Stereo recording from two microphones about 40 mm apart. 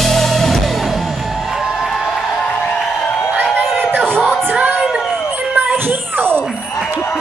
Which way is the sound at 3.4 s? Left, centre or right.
Right.